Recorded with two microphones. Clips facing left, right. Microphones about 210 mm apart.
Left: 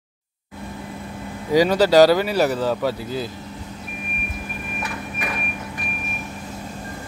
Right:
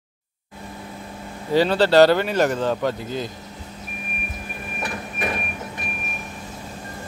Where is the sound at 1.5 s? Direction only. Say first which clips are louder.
Left 1 dB; 10° left (ahead or behind).